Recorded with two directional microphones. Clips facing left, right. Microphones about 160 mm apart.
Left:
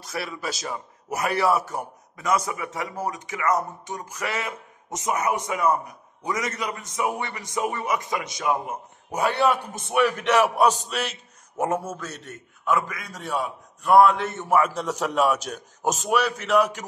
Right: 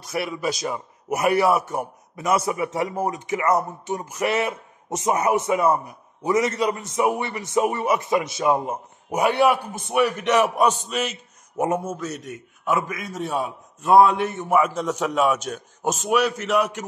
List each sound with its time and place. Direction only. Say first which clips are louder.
0.7 s a man's voice: right 5 dB; 25° right (ahead or behind)
9.1 s a man's voice: right 3 dB; 15° right (ahead or behind)
9.8 s a man's voice: right 1 dB; centre (ahead or behind)
12.6 s a man's voice: right 1 dB; 20° right (ahead or behind)
14.4 s a man's voice: right 1 dB; 5° right (ahead or behind)